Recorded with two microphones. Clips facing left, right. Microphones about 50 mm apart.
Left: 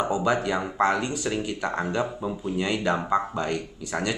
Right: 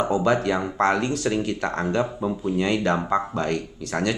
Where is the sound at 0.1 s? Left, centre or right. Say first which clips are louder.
Right 3 dB; centre.